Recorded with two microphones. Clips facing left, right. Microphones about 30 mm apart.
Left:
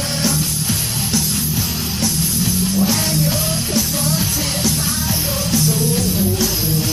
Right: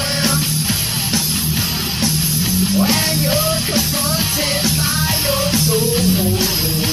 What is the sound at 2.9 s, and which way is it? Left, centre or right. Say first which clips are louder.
Music: right 2 dB; right.